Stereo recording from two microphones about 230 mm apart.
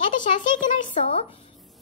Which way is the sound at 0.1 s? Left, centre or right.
Left.